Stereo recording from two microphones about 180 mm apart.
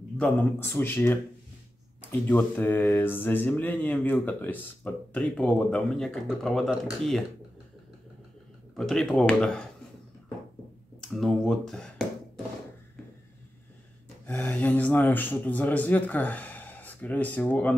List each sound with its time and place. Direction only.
0.2 s speech: 10° left (ahead or behind)
8.7 s speech: centre (ahead or behind)
11.0 s speech: centre (ahead or behind)
14.2 s speech: 5° left (ahead or behind)